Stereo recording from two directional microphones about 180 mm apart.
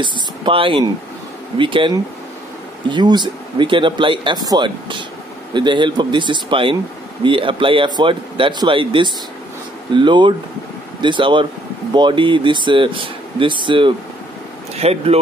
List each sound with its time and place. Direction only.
0.0 s speech: 30° right (ahead or behind)